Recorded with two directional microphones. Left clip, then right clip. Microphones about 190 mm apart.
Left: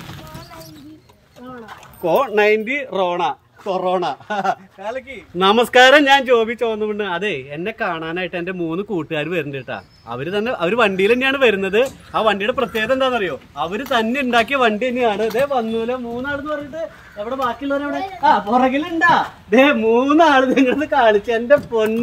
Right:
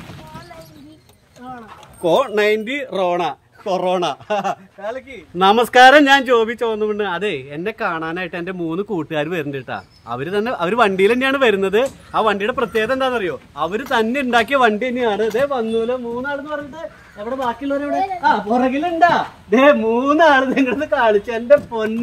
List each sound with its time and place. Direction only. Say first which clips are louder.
2.0 s speech: even; 15° right (ahead or behind); by 4.2 s 35° right (ahead or behind)
4.3 s speech: even; 15° right (ahead or behind)
17.2 s speech: even; 5° right (ahead or behind)